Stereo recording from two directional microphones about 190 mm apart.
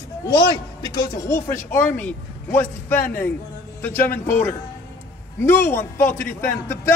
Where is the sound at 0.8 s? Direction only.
20° left (ahead or behind).